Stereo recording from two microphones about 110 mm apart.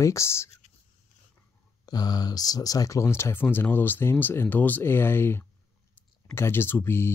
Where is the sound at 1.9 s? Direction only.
40° left (ahead or behind).